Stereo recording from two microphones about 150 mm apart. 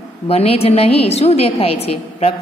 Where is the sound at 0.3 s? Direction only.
40° left (ahead or behind).